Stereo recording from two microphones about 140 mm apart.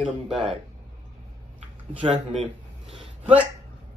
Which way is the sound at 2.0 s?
40° right (ahead or behind).